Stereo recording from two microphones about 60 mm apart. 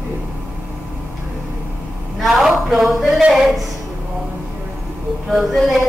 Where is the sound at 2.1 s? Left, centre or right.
Centre.